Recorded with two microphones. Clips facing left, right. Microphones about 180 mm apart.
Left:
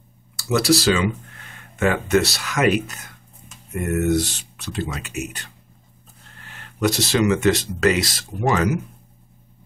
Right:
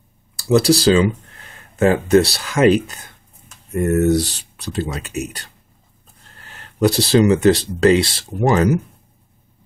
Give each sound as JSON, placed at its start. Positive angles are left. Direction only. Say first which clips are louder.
{"t": 0.4, "sound": "speech", "louder": "right 4 dB", "side_deg": -30}